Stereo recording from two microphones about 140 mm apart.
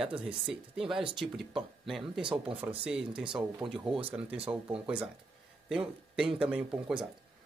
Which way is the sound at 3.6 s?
30° right (ahead or behind).